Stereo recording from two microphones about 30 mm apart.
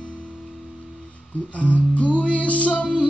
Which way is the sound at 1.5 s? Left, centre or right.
Left.